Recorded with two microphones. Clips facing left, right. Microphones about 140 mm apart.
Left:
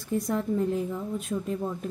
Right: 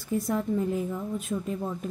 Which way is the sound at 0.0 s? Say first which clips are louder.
Even; centre (ahead or behind).